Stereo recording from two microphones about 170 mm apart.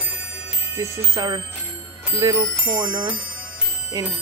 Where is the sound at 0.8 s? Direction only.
20° right (ahead or behind).